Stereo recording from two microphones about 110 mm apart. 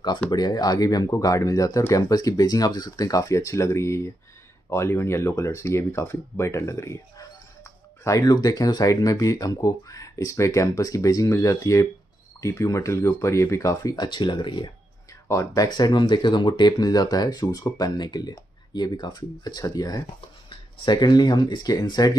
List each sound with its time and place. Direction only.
0.3 s speech: 40° left (ahead or behind)
14.0 s speech: 45° left (ahead or behind)
15.2 s speech: 30° left (ahead or behind)